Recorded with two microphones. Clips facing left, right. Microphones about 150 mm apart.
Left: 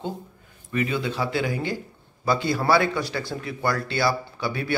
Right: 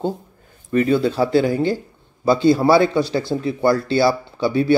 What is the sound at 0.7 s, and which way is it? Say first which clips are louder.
Speech: right 9 dB; 35° right (ahead or behind).